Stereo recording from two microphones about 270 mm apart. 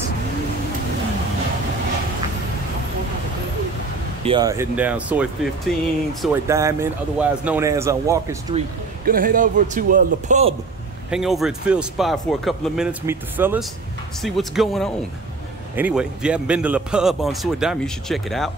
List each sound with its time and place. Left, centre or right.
4.2 s a man's voice: centre
8.5 s a man's voice: right
11.1 s a man's voice: centre